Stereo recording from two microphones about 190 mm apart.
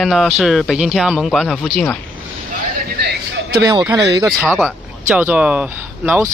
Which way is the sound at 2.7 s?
55° right (ahead or behind).